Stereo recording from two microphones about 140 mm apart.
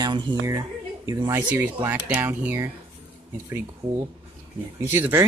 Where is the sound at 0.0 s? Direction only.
30° right (ahead or behind).